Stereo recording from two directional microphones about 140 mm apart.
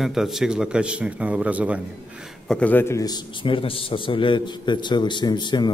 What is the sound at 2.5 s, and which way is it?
A man's voice, 10° left (ahead or behind).